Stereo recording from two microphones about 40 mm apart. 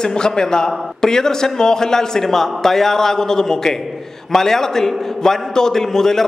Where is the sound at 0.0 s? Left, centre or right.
Centre.